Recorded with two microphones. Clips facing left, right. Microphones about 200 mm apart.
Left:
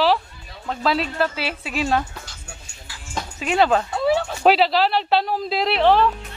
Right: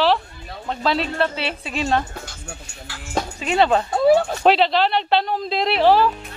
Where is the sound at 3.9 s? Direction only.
45° right (ahead or behind).